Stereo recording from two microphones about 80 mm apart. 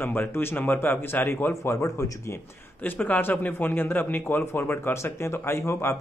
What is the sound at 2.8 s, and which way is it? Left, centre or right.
A man's voice, left.